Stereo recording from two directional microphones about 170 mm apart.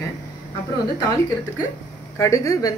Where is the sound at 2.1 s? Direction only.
15° left (ahead or behind).